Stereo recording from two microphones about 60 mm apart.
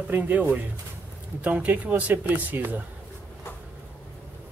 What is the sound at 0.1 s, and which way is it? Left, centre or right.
Speech, right.